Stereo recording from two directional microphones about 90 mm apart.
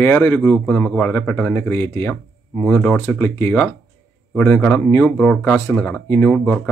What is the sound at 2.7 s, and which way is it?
Speech, 20° left (ahead or behind).